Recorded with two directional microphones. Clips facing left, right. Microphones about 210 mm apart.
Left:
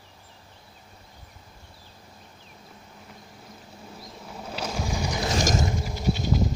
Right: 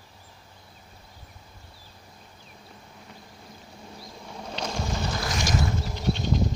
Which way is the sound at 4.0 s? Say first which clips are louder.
Even; centre (ahead or behind).